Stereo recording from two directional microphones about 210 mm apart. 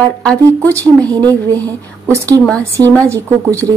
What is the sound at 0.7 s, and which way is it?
Speech, 15° right (ahead or behind).